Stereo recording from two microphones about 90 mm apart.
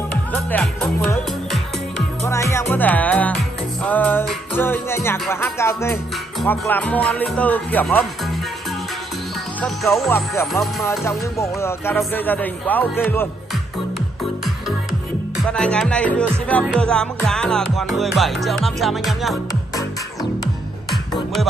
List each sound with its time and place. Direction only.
0.1 s speech: 15° left (ahead or behind)
2.2 s speech: 35° left (ahead or behind); by 3.3 s 15° left (ahead or behind)
3.8 s music: 20° left (ahead or behind)
4.6 s speech: 25° left (ahead or behind)
6.7 s music: 15° left (ahead or behind)
10.0 s speech: 30° left (ahead or behind)
15.5 s music: 10° left (ahead or behind)
20.9 s music: centre (ahead or behind)